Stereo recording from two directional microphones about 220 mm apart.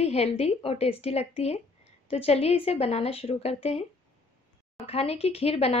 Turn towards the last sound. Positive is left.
turn(degrees=25)  # may be behind; listen again after turning